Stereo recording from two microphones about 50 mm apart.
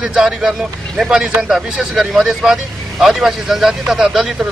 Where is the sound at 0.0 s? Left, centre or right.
Centre.